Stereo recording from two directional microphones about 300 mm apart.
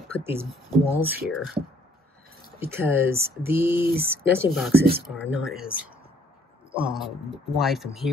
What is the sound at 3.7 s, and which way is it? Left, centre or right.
Speech, right.